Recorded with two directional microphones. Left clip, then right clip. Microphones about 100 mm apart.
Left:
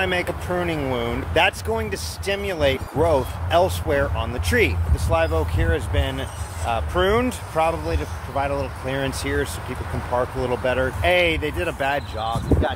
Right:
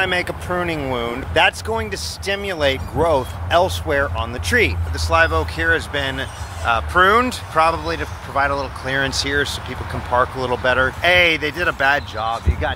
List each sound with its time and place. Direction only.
0.0 s speech: 10° left (ahead or behind)
12.2 s speech: 25° left (ahead or behind)